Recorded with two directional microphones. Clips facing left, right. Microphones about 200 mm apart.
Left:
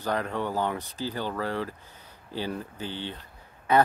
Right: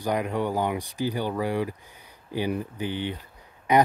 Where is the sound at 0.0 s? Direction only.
15° right (ahead or behind).